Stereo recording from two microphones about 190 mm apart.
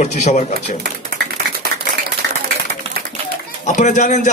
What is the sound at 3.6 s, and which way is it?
Speech, 40° left (ahead or behind).